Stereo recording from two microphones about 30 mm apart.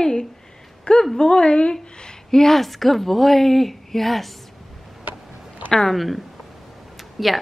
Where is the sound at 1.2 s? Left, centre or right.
Left.